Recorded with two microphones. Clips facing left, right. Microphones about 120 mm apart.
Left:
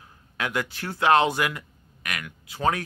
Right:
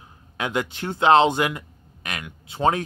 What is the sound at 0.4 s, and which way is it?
Speech, 20° right (ahead or behind).